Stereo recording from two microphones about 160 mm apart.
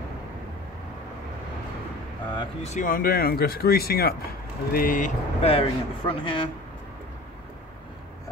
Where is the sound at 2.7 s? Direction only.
60° left (ahead or behind).